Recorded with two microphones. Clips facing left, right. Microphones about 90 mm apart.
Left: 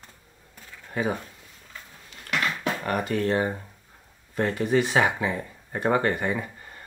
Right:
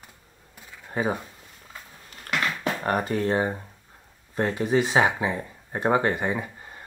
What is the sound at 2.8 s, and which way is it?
Speech, 30° right (ahead or behind).